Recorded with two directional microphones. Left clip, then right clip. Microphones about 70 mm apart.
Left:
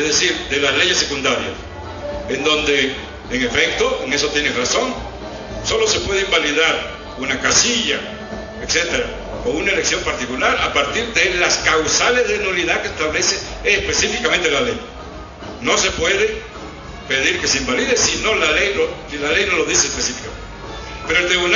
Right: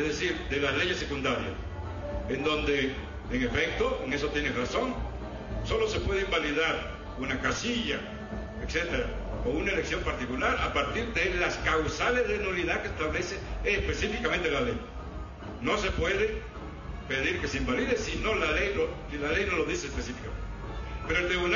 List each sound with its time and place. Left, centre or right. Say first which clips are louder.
0.0 s a man's voice: left 13 dB; right
19.7 s a man's voice: left 15 dB; centre
21.1 s a man's voice: left 12 dB; right